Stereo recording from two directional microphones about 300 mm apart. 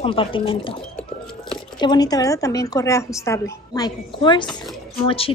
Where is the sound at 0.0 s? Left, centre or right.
Centre.